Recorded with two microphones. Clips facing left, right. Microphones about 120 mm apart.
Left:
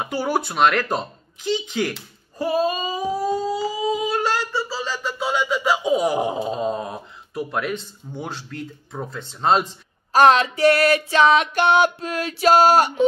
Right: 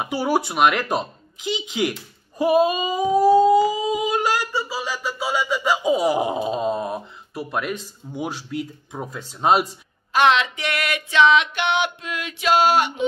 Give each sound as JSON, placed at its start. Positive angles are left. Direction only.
{"t": 0.0, "sound": "speech", "side_deg": -10}
{"t": 10.1, "sound": "music", "side_deg": 40}